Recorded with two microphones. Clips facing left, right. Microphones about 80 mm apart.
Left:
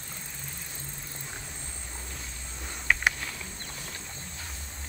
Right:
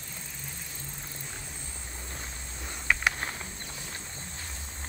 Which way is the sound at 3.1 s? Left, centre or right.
Right.